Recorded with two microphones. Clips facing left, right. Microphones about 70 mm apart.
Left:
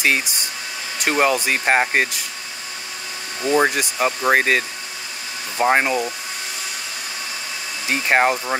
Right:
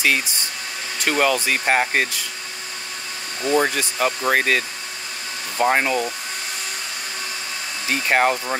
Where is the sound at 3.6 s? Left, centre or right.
Left.